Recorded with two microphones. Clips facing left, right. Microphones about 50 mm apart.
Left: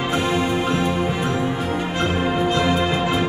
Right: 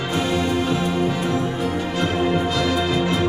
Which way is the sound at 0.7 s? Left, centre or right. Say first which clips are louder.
Even; centre.